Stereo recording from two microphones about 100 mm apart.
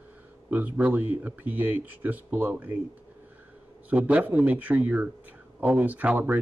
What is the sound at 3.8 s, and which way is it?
Speech, 15° right (ahead or behind).